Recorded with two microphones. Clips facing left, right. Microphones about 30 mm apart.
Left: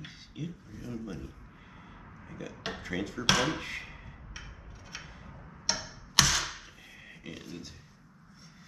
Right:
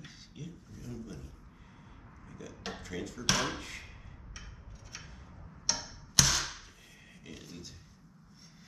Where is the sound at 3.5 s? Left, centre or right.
Left.